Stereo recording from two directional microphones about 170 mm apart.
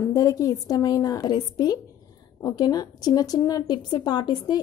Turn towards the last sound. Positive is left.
turn(degrees=25)  # may be behind; listen again after turning